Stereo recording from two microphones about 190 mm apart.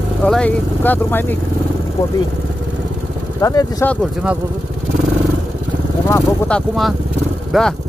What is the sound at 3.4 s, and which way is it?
Speech, 20° left (ahead or behind).